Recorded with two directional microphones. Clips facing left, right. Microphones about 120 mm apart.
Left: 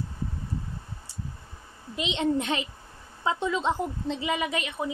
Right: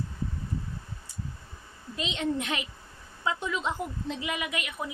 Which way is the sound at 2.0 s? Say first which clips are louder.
Left 4 dB; 25° left (ahead or behind).